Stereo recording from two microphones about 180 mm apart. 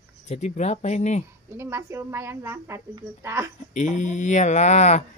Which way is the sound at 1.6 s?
15° right (ahead or behind).